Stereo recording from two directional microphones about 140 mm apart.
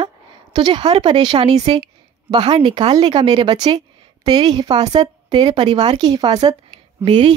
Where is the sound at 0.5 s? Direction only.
30° right (ahead or behind).